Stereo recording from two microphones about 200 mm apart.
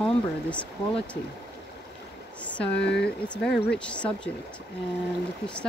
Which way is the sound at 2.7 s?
60° left (ahead or behind).